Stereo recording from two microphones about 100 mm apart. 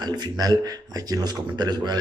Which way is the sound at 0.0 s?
40° right (ahead or behind).